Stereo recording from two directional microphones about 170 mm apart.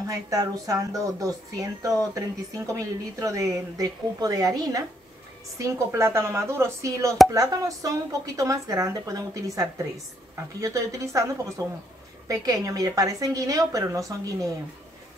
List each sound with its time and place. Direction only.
0.1 s a woman's voice: 20° right (ahead or behind)